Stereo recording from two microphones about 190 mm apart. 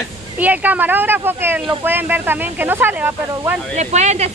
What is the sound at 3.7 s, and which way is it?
Speech, 35° right (ahead or behind).